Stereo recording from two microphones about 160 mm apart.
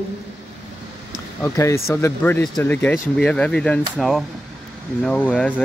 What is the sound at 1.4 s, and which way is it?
Speech, 15° left (ahead or behind).